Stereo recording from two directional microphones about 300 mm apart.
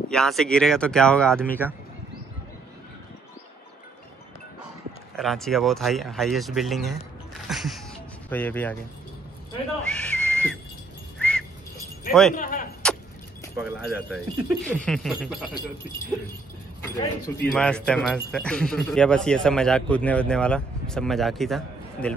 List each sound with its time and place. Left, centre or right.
0.1 s speech: centre
5.1 s speech: centre
9.8 s a sound: centre
11.1 s whistling: centre
12.1 s speech: centre
12.4 s speech: left
12.8 s vehicle: centre
13.6 s speech: centre
17.4 s speech: centre